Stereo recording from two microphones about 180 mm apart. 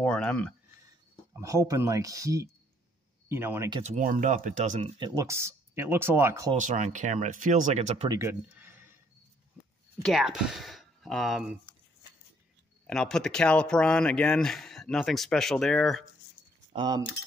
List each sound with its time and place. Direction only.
0.0 s speech: 5° left (ahead or behind)
1.3 s speech: 15° right (ahead or behind)
3.8 s speech: 45° right (ahead or behind); by 6.5 s 15° right (ahead or behind)
6.5 s speech: 45° right (ahead or behind)
8.1 s a sound: 15° right (ahead or behind)
10.0 s speech: centre (ahead or behind)
12.8 s speech: 5° left (ahead or behind)
16.7 s speech: 20° right (ahead or behind)